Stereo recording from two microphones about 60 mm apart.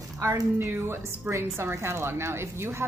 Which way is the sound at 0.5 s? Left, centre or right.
Right.